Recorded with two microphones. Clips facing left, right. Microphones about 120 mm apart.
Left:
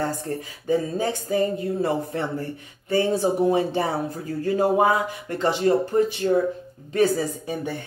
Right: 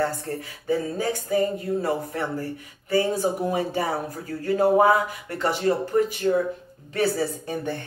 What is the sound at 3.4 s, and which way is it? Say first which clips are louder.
Speech: left 3 dB; 25° left (ahead or behind).